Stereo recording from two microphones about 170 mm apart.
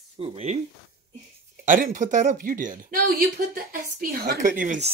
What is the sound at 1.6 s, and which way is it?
Speech, 50° right (ahead or behind).